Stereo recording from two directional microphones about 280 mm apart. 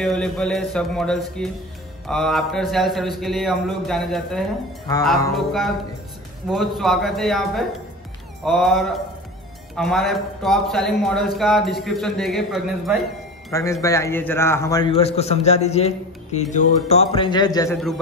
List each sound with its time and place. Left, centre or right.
0.0 s speech: centre
13.5 s a man's voice: centre